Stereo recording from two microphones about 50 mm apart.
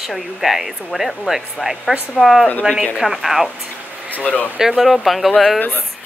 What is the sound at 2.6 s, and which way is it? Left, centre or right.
Speech, right.